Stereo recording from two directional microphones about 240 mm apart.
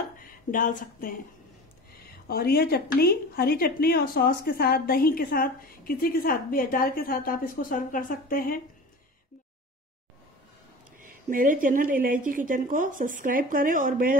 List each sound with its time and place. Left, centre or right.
0.5 s speech: left
2.2 s speech: left
11.2 s speech: right